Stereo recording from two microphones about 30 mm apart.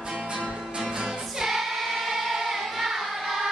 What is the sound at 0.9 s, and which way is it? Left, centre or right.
Music, centre.